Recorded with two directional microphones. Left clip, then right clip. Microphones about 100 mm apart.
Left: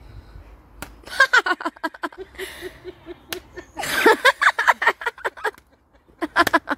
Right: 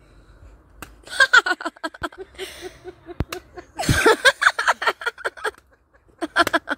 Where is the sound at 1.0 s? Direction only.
15° left (ahead or behind).